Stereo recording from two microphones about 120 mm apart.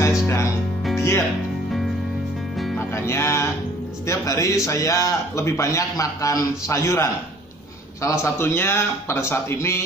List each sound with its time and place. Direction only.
0.9 s music: 20° left (ahead or behind)
3.0 s a man's voice: 20° left (ahead or behind)